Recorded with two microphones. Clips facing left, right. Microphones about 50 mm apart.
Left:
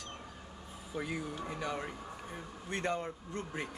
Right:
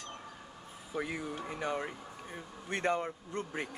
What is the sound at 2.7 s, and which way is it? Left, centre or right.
A man's voice, right.